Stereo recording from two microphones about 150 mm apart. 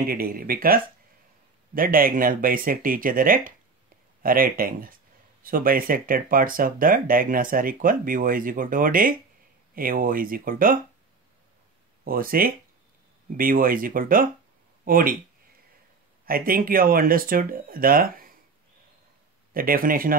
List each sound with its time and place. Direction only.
0.0 s speech: 80° right
1.8 s speech: 70° right (ahead or behind)
12.0 s speech: 75° right (ahead or behind)
16.3 s speech: 75° right (ahead or behind)
19.5 s speech: 75° right (ahead or behind)